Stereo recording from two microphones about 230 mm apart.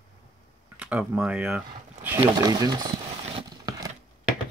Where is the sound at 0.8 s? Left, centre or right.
Centre.